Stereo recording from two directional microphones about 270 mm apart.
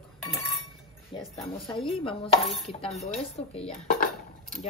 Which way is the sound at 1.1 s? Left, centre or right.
Centre.